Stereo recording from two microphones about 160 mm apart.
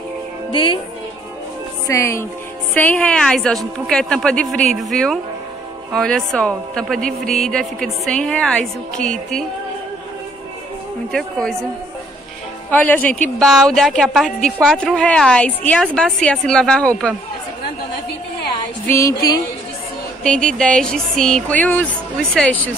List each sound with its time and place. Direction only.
0.5 s speech: 30° left (ahead or behind)
1.9 s a woman's voice: 15° left (ahead or behind)
11.1 s a woman's voice: 5° left (ahead or behind)
12.7 s a woman's voice: 10° left (ahead or behind)
18.9 s music: 20° left (ahead or behind)
20.2 s a woman's voice: 5° left (ahead or behind)